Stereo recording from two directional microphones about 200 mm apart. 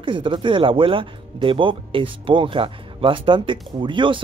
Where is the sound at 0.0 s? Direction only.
25° right (ahead or behind).